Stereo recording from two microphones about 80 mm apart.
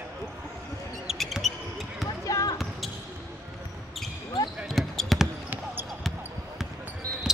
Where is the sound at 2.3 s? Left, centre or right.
Left.